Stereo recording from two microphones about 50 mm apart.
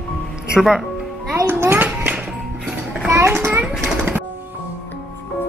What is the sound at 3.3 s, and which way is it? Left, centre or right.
Children playing, right.